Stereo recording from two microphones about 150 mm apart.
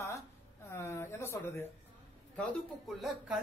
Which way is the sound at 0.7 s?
15° left (ahead or behind).